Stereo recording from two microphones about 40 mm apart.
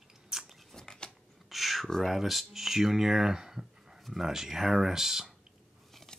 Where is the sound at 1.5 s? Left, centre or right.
Centre.